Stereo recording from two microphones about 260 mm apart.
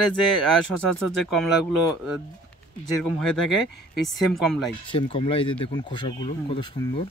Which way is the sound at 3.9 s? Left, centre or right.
Centre.